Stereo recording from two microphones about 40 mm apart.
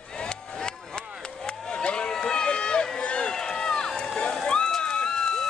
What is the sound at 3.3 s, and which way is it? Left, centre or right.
Run, centre.